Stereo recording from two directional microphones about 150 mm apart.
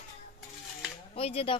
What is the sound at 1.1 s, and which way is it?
Speech, 40° left (ahead or behind).